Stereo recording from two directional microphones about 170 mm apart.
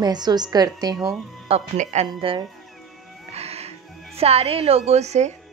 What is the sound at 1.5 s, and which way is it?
Speech, 45° right (ahead or behind).